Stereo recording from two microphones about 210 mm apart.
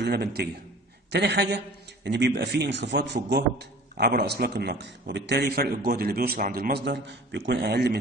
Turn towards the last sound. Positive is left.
turn(degrees=-50)  # may be behind; listen again after turning